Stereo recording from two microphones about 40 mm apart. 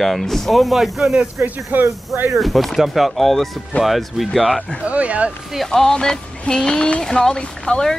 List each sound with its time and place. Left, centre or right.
0.0 s speech: centre
1.4 s speech: right
2.3 s speech: centre
4.8 s speech: right
5.7 s speech: centre